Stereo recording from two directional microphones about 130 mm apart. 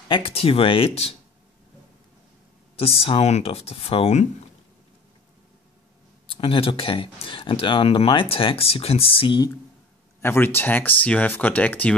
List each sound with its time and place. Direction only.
0.1 s speech: 45° left (ahead or behind)
2.8 s speech: 50° left (ahead or behind)
6.3 s speech: 40° left (ahead or behind)
10.2 s speech: 15° left (ahead or behind)